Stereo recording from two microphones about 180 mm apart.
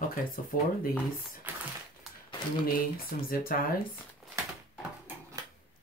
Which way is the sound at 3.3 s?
55° left (ahead or behind).